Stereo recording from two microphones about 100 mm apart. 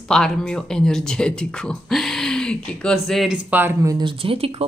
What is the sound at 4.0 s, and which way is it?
Speech, 60° right (ahead or behind).